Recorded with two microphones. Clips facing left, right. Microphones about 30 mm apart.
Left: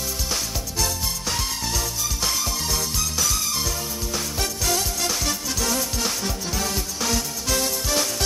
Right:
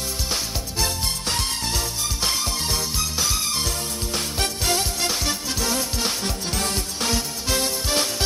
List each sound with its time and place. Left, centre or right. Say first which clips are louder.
0.3 s music: even; centre